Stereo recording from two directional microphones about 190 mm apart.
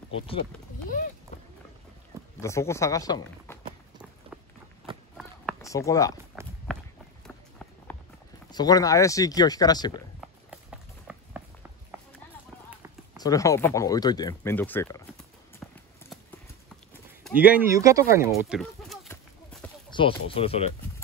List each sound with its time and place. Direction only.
0.8 s speech: 50° left (ahead or behind)
2.4 s speech: 15° left (ahead or behind)
5.1 s a sound: centre (ahead or behind)
5.6 s speech: 15° left (ahead or behind)
6.7 s walk: centre (ahead or behind)
7.2 s run: 10° left (ahead or behind)
8.5 s speech: 20° left (ahead or behind)
10.5 s run: 5° right (ahead or behind)
13.2 s speech: 20° left (ahead or behind)
15.6 s clip-clop: 5° left (ahead or behind)
17.4 s speech: 10° right (ahead or behind)
18.3 s speech: centre (ahead or behind)
19.9 s speech: 25° left (ahead or behind)